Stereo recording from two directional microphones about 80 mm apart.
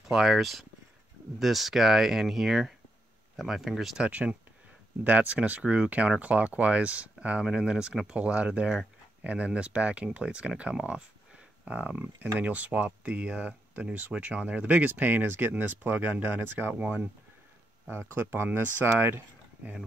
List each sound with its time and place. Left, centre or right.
0.1 s speech: centre
4.1 s speech: centre
18.1 s speech: right